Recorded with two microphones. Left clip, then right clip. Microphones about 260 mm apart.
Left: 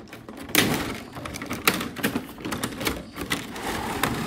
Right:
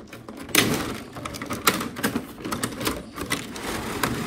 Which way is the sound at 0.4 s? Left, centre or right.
Centre.